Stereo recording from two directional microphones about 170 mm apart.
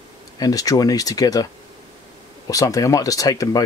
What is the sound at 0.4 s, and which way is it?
Speech, 20° left (ahead or behind).